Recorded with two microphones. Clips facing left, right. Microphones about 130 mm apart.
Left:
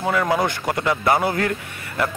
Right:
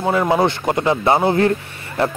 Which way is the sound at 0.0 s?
25° right (ahead or behind).